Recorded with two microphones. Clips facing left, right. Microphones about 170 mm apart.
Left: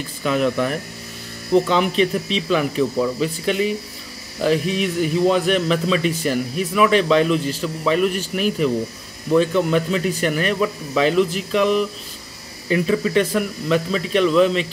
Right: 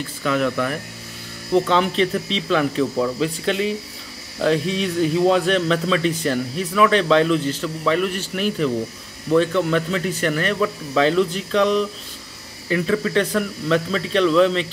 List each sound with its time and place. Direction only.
0.2 s speech: 20° left (ahead or behind)